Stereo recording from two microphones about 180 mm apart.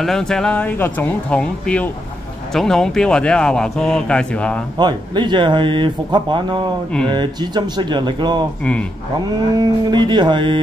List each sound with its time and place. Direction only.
0.0 s a man's voice: centre (ahead or behind)
4.7 s speech: 25° right (ahead or behind)
9.6 s speech: 25° right (ahead or behind)